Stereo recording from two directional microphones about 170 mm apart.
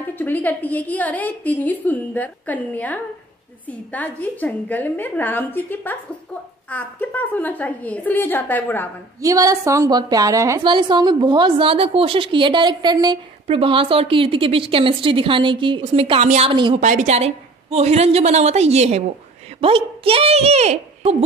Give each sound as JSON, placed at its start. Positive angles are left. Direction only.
{"t": 0.1, "sound": "a woman's voice", "side_deg": 10}
{"t": 9.2, "sound": "a woman's voice", "side_deg": -20}
{"t": 16.5, "sound": "a woman's voice", "side_deg": -30}
{"t": 16.8, "sound": "a woman's voice", "side_deg": -45}